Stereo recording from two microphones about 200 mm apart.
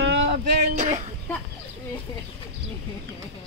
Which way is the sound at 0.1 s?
60° right (ahead or behind).